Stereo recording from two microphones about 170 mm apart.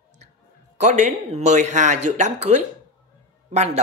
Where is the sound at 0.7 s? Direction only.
45° right (ahead or behind).